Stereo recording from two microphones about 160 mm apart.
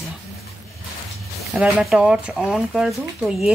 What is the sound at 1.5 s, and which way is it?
Speech, 5° right (ahead or behind).